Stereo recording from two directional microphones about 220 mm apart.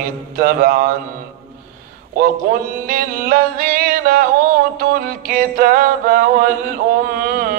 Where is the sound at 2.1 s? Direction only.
40° right (ahead or behind).